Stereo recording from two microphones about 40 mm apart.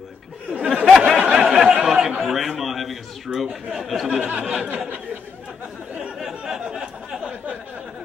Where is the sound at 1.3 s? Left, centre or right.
Centre.